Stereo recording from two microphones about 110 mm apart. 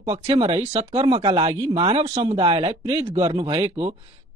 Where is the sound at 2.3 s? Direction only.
55° right (ahead or behind).